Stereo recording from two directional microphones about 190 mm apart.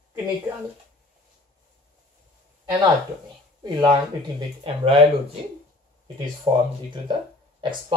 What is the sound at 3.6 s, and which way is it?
Speech, 20° right (ahead or behind).